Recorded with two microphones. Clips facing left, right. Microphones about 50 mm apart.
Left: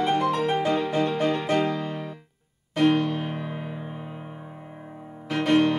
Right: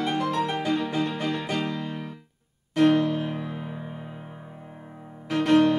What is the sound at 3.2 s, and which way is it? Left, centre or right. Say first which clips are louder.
Music: even; centre.